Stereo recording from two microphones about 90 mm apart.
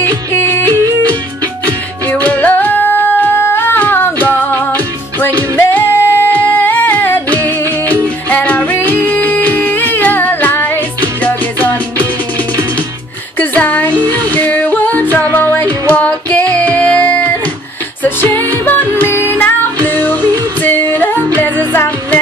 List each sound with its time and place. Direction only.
0.0 s music: 25° left (ahead or behind)
2.0 s music: 20° left (ahead or behind)
13.4 s a sound: 20° left (ahead or behind)
14.3 s music: 20° left (ahead or behind)